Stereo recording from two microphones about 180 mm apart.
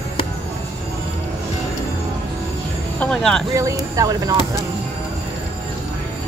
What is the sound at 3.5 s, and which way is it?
Speech, 20° right (ahead or behind).